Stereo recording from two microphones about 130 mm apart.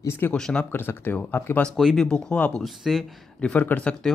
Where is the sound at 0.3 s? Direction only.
5° left (ahead or behind).